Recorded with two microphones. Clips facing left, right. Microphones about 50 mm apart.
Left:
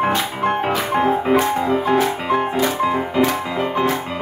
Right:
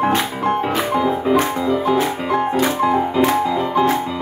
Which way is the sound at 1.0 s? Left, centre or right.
Left.